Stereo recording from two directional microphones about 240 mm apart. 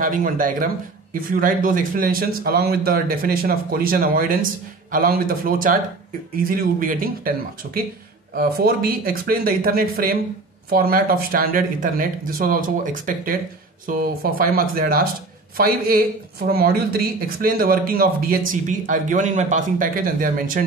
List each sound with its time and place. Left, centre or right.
0.0 s speech: right